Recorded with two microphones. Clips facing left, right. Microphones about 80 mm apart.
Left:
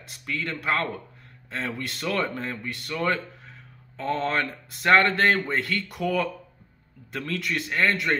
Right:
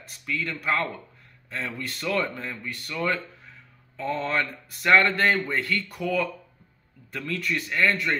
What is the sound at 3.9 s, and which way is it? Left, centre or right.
Speech, left.